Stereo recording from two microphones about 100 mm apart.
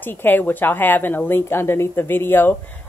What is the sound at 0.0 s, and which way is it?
Speech, 20° left (ahead or behind).